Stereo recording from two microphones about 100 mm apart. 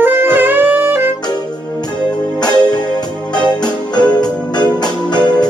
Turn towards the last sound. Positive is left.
turn(degrees=45)  # may be behind; listen again after turning